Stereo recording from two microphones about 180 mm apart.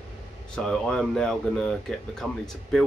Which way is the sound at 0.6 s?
5° left (ahead or behind).